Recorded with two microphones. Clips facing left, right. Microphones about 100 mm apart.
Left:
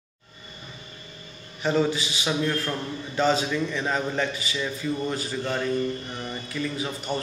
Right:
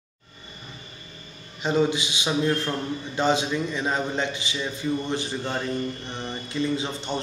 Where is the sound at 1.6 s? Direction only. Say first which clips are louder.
Right 1 dB; 15° right (ahead or behind).